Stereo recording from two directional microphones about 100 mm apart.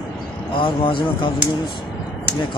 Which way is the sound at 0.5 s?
60° left (ahead or behind).